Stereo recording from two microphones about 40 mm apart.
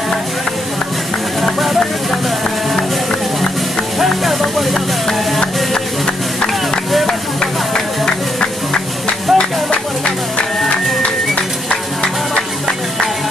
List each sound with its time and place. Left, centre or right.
4.0 s music: centre
7.7 s music: centre
9.3 s music: centre